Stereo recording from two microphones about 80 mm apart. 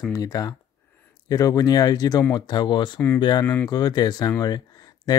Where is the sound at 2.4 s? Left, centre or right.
Left.